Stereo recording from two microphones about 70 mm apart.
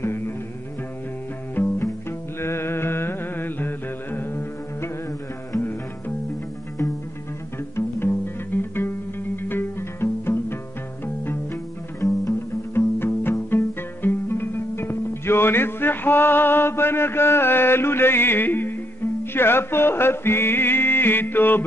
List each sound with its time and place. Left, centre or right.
0.0 s music: left
1.5 s music: left
7.7 s music: left
12.3 s music: left